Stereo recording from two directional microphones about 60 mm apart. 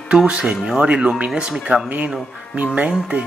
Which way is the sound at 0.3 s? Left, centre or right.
Centre.